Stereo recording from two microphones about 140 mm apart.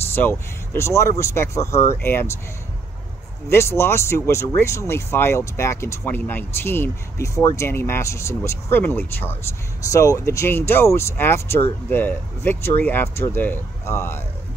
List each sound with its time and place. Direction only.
0.1 s speech: 15° left (ahead or behind)
3.4 s speech: 20° left (ahead or behind)